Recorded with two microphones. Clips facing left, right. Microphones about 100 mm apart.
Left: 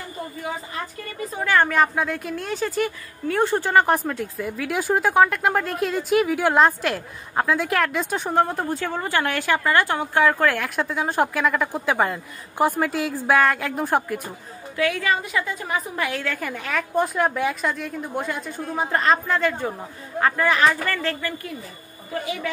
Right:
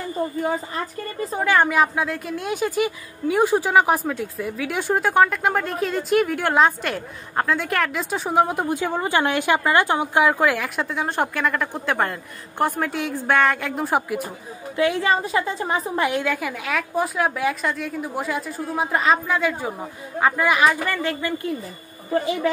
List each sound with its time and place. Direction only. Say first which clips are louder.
1.4 s speech: right 1 dB; 15° right (ahead or behind)
2.5 s speech: right 2 dB; 10° right (ahead or behind)
14.8 s a woman's voice: right 3 dB; 25° right (ahead or behind)
16.3 s a woman's voice: right 1 dB; 5° right (ahead or behind); by 21.5 s 20° right (ahead or behind)
22.1 s a woman's voice: right 6 dB; 30° right (ahead or behind)